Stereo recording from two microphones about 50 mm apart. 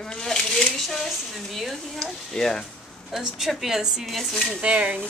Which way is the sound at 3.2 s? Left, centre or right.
Centre.